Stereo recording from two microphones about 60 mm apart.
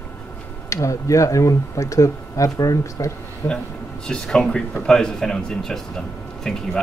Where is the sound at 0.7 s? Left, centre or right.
Left.